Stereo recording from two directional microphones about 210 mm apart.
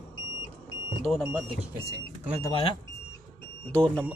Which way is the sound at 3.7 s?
5° left (ahead or behind).